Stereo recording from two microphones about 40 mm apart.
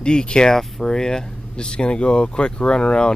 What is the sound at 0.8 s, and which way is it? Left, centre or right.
Speech, centre.